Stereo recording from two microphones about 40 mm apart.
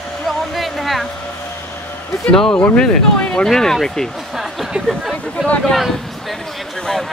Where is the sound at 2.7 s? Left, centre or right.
Left.